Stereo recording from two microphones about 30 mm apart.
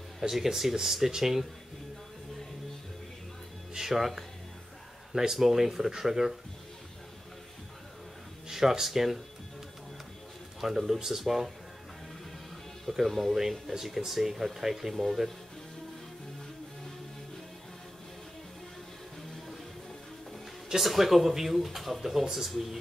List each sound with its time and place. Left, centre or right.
0.2 s speech: centre
3.7 s speech: centre
8.5 s speech: centre
10.6 s speech: centre
13.0 s speech: centre
13.4 s speech: centre
20.8 s speech: centre